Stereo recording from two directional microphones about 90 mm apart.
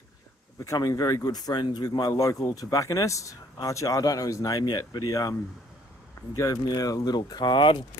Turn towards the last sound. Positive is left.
turn(degrees=65)  # may be behind; listen again after turning